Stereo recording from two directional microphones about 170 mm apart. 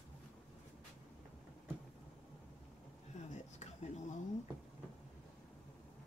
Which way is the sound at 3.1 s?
45° left (ahead or behind).